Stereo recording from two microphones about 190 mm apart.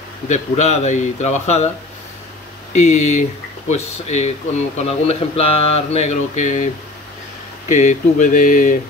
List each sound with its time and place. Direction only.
0.3 s mantra: 40° left (ahead or behind)
2.7 s mantra: 35° left (ahead or behind)